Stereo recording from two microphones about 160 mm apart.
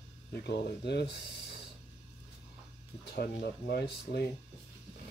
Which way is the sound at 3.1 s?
75° left (ahead or behind).